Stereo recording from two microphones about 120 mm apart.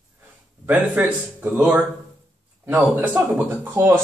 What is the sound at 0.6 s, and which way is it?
Speech, 15° right (ahead or behind).